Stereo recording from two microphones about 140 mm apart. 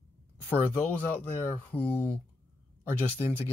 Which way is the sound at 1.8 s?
10° left (ahead or behind).